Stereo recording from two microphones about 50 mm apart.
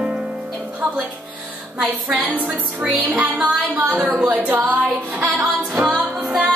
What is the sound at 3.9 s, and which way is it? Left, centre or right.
Music, right.